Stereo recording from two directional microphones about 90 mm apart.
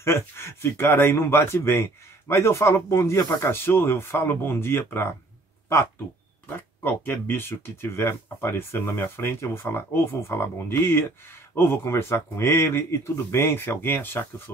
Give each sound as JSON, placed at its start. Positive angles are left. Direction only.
{"t": 0.0, "sound": "speech", "side_deg": 30}
{"t": 3.4, "sound": "speech", "side_deg": 25}
{"t": 6.8, "sound": "speech", "side_deg": 25}